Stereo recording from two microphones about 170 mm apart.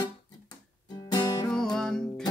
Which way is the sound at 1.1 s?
25° left (ahead or behind).